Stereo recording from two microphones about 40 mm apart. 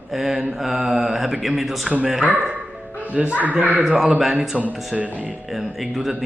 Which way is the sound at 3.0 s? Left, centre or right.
Right.